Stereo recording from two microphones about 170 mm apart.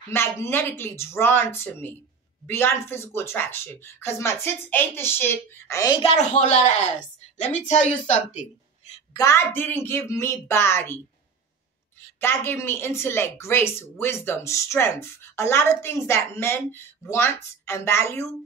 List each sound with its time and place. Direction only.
0.1 s a woman's voice: 15° left (ahead or behind)
6.0 s a woman's voice: 45° left (ahead or behind)
9.1 s a woman's voice: 15° left (ahead or behind)
12.2 s a woman's voice: 15° left (ahead or behind)